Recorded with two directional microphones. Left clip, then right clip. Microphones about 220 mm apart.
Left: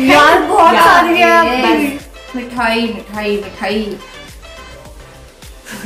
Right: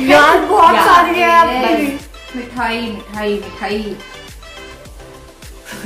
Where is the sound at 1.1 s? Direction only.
15° right (ahead or behind).